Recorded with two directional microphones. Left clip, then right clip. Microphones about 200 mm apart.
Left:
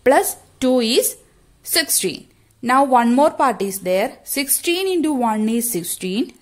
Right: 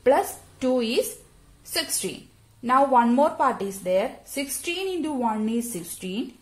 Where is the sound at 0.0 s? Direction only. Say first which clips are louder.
Left 5 dB; 50° left (ahead or behind).